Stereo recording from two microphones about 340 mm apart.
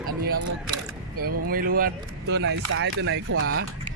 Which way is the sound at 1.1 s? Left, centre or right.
Right.